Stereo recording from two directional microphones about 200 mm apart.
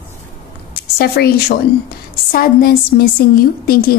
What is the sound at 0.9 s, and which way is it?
A woman's voice, 50° left (ahead or behind).